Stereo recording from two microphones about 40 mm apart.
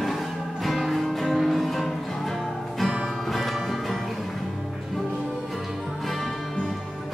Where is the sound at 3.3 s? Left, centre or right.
Centre.